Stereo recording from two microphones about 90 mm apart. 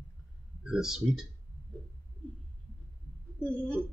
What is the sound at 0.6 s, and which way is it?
Speech, 5° right (ahead or behind).